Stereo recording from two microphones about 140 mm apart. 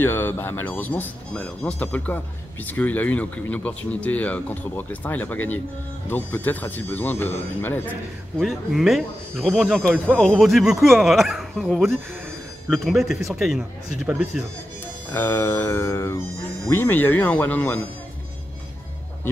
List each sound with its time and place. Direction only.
0.0 s speech: 15° left (ahead or behind)
8.4 s speech: centre (ahead or behind)
15.1 s speech: 15° left (ahead or behind)